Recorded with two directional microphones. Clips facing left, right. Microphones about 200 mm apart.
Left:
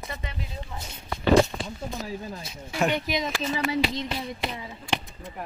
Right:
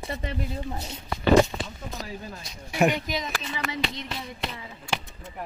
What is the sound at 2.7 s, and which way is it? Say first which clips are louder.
Speech: right 3 dB; 15° right (ahead or behind).